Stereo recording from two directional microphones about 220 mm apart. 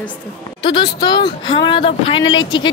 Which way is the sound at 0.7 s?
20° left (ahead or behind).